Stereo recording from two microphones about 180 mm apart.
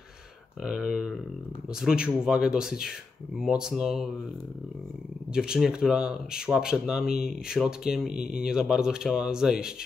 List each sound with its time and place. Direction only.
0.7 s speech: 5° right (ahead or behind)
5.3 s speech: 5° right (ahead or behind)